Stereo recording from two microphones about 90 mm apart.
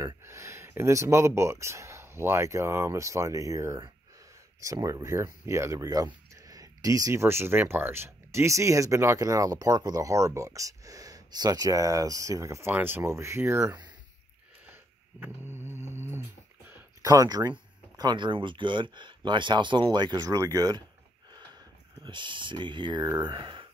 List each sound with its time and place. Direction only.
0.0 s speech: 35° right (ahead or behind)
4.8 s speech: 35° right (ahead or behind)
14.7 s dog: 25° right (ahead or behind)
17.0 s speech: 40° right (ahead or behind)
20.3 s speech: 40° right (ahead or behind)
22.0 s speech: 60° right (ahead or behind)